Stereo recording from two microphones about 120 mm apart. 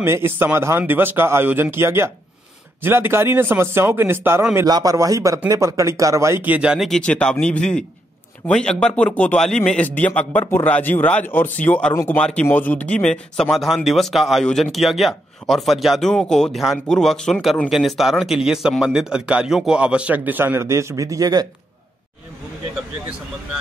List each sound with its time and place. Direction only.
0.0 s speech: 20° right (ahead or behind)
4.6 s speech: 30° right (ahead or behind); by 6.9 s 10° right (ahead or behind)
6.9 s speech: 10° left (ahead or behind)
11.9 s speech: 25° left (ahead or behind)
12.2 s speech: 10° left (ahead or behind); by 21.5 s 30° right (ahead or behind)